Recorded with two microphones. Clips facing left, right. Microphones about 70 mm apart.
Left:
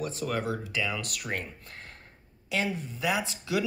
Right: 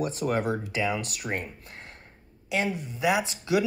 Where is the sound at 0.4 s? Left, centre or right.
Right.